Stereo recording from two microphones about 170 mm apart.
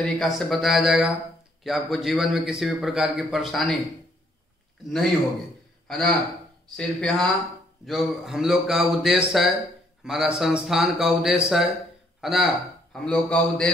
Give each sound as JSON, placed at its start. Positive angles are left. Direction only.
{"t": 0.0, "sound": "a man's voice", "side_deg": 0}
{"t": 4.8, "sound": "a man's voice", "side_deg": 0}